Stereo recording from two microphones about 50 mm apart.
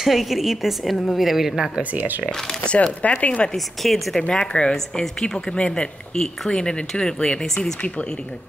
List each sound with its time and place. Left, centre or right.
0.0 s a woman's voice: centre
1.8 s speech: right
2.4 s speech: centre
3.5 s a woman's voice: centre
4.3 s speech: centre
4.7 s a woman's voice: centre
5.2 s speech: centre